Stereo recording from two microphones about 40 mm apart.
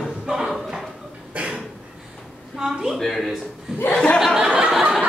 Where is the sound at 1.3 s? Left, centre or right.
Right.